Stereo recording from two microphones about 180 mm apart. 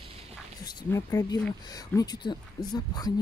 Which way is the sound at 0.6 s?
20° left (ahead or behind).